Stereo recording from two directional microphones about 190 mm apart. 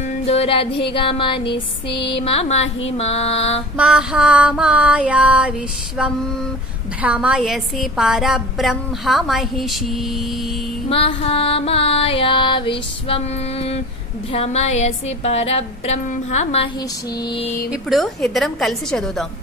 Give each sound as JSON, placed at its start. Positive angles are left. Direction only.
{"t": 0.3, "sound": "music", "side_deg": 30}
{"t": 0.9, "sound": "a sound", "side_deg": 25}
{"t": 1.9, "sound": "music", "side_deg": 25}
{"t": 3.7, "sound": "a woman's voice", "side_deg": -5}
{"t": 7.0, "sound": "a woman's voice", "side_deg": -5}
{"t": 10.9, "sound": "music", "side_deg": 30}
{"t": 17.2, "sound": "a sound", "side_deg": 25}
{"t": 17.6, "sound": "a woman's voice", "side_deg": 0}